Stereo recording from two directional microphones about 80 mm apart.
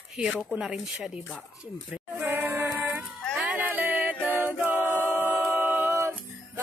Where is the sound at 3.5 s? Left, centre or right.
Centre.